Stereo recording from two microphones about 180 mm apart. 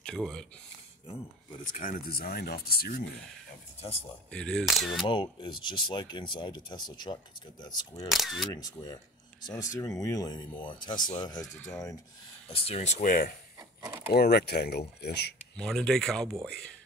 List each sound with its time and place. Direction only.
0.0 s speech: 5° left (ahead or behind)
1.7 s speech: 50° left (ahead or behind)
4.3 s speech: 5° left (ahead or behind)
5.0 s speech: 25° left (ahead or behind)
8.1 s speech: centre (ahead or behind)
8.5 s speech: 20° left (ahead or behind)
11.4 s speech: 5° left (ahead or behind)
12.4 s speech: 35° left (ahead or behind); by 13.3 s 50° left (ahead or behind)
13.6 s a sound: 20° right (ahead or behind)
14.1 s speech: 60° left (ahead or behind)
15.5 s speech: 5° left (ahead or behind)